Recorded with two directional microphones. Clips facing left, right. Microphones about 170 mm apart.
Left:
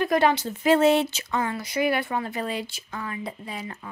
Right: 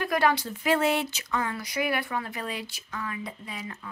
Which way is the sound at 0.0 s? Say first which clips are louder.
Left 4 dB; 25° left (ahead or behind).